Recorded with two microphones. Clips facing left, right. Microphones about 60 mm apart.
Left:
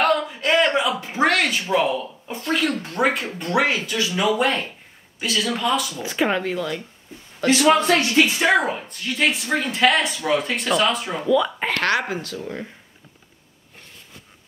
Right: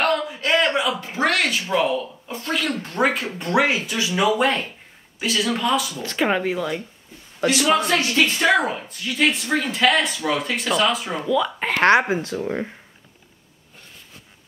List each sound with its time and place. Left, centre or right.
0.0 s a sound: centre
1.3 s speech: centre
3.5 s speech: centre
4.2 s speech: centre
8.0 s a woman's voice: left
8.3 s a woman's voice: centre
8.8 s speech: centre
11.8 s speech: right